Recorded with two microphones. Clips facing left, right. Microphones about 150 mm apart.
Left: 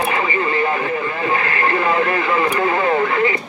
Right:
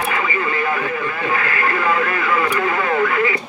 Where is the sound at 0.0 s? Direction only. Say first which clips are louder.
Left 2 dB; 30° left (ahead or behind).